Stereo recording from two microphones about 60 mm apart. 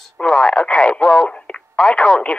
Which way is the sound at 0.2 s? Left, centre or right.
Centre.